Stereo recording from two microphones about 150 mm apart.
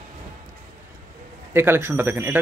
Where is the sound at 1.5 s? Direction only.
15° right (ahead or behind).